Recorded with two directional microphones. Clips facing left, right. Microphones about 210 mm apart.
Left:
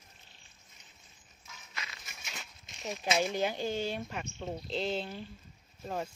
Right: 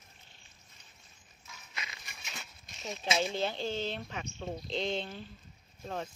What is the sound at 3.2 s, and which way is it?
Speech, 10° left (ahead or behind).